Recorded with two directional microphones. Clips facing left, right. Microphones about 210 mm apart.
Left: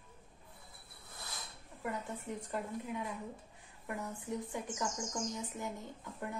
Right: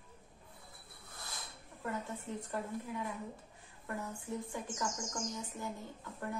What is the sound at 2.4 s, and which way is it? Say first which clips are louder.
Speech: left 1 dB; 20° left (ahead or behind).